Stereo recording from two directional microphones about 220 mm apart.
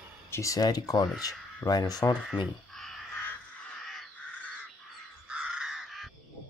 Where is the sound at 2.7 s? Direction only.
Centre (ahead or behind).